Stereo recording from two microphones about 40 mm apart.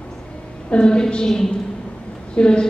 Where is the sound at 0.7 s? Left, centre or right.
Left.